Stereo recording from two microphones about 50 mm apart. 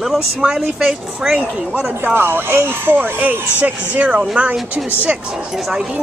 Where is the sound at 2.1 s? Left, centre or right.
Right.